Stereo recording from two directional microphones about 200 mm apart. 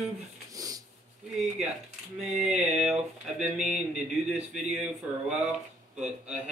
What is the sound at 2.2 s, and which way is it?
Speech, 5° right (ahead or behind).